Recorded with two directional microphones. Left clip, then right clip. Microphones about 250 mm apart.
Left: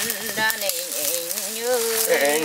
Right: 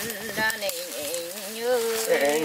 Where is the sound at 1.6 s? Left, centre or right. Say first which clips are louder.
Left 2 dB; centre.